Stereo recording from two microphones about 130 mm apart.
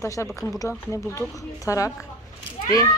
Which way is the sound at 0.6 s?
20° left (ahead or behind).